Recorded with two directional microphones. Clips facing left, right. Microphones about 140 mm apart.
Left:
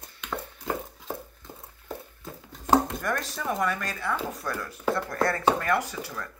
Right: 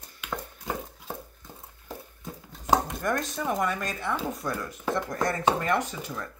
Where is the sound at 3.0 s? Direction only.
20° right (ahead or behind).